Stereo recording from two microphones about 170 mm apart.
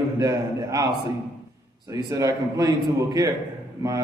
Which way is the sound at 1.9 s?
20° right (ahead or behind).